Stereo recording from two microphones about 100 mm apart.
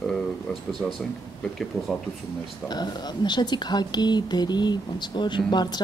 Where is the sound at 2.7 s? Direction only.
45° left (ahead or behind).